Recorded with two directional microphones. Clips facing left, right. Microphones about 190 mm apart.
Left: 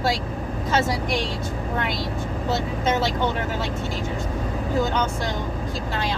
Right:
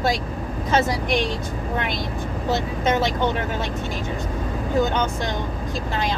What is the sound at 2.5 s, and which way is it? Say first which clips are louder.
Speech: right 2 dB; 15° right (ahead or behind).